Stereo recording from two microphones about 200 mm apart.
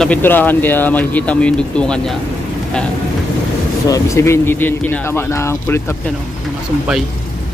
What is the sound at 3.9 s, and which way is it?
Speech, 15° left (ahead or behind).